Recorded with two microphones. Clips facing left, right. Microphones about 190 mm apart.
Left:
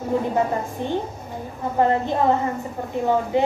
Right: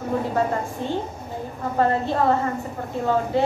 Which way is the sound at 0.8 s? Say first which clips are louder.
Left 1 dB; 20° left (ahead or behind).